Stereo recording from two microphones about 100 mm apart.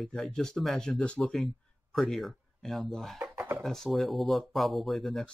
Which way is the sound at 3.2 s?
25° right (ahead or behind).